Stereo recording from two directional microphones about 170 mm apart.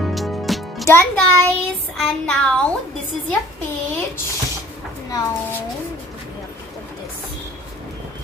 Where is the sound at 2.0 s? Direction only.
5° left (ahead or behind).